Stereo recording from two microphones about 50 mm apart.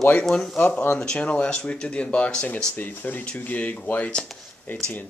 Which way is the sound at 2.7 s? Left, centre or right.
Left.